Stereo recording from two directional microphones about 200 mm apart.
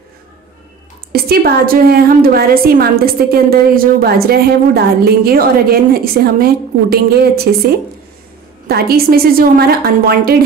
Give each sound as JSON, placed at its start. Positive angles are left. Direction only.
{"t": 1.1, "sound": "a woman's voice", "side_deg": -50}
{"t": 8.6, "sound": "a woman's voice", "side_deg": -50}